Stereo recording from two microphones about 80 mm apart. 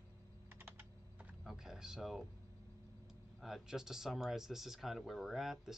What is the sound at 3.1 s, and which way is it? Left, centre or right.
Speech, centre.